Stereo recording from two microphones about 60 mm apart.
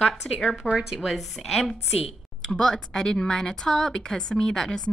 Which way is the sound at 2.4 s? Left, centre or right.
Centre.